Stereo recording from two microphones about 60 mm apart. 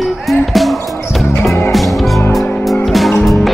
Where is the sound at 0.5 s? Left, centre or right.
Centre.